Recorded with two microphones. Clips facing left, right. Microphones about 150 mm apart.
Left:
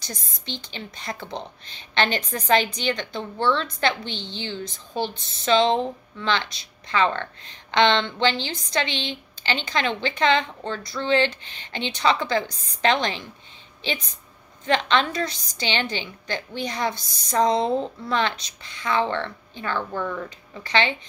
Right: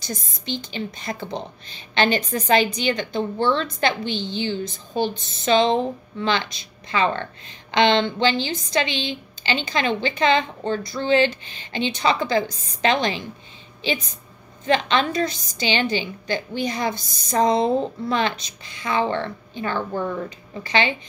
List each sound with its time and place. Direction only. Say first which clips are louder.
0.0 s a woman's voice: right 6 dB; 10° right (ahead or behind)
14.7 s a woman's voice: right 2 dB; 10° right (ahead or behind)
19.9 s speech: right 3 dB; 30° right (ahead or behind)
20.6 s a woman's voice: right 1 dB; 10° right (ahead or behind)